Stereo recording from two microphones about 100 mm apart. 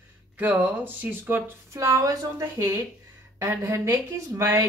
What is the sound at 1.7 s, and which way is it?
A woman's voice, 30° right (ahead or behind).